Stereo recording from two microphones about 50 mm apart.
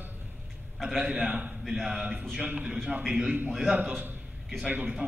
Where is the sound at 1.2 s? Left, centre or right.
Right.